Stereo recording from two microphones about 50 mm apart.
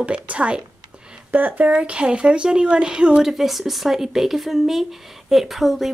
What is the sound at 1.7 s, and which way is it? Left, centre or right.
Speech, centre.